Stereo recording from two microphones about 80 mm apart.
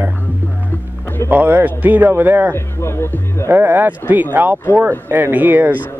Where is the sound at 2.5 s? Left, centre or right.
Left.